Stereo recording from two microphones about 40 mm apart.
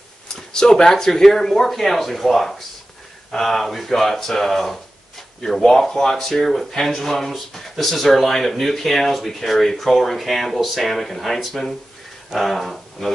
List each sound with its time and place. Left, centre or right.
0.5 s speech: centre